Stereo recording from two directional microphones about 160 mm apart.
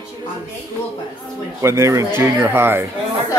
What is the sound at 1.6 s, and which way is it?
Speech, 20° right (ahead or behind).